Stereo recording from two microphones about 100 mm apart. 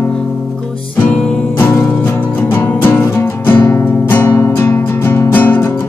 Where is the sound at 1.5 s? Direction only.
20° left (ahead or behind).